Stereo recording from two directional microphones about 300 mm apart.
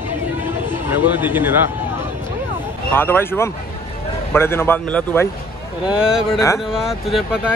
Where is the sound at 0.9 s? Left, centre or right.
Centre.